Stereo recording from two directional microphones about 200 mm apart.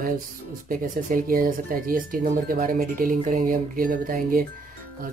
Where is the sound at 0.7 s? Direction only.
45° right (ahead or behind).